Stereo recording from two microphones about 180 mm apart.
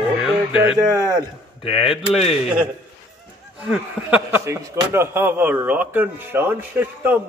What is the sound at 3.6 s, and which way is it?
Speech, 5° right (ahead or behind).